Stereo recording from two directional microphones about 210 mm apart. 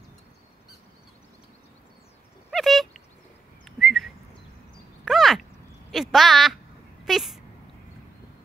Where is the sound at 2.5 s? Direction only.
Centre (ahead or behind).